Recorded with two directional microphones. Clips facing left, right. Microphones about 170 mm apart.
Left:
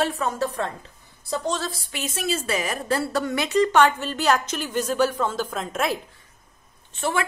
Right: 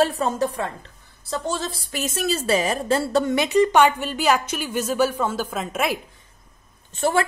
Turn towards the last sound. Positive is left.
turn(degrees=-40)  # may be behind; listen again after turning